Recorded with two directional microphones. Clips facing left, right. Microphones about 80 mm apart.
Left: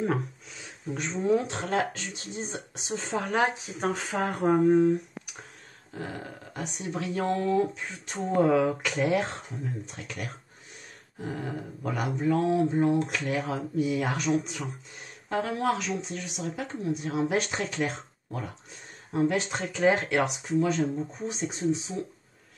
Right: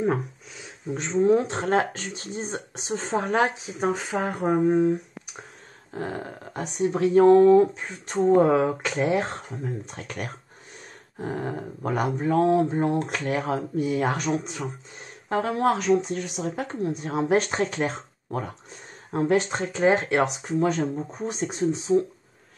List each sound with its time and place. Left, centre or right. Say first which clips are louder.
0.9 s speech: right 5 dB; right
3.8 s speech: right 3 dB; centre
5.9 s speech: right 5 dB; right
9.8 s speech: right 4 dB; right
20.6 s speech: right 3 dB; right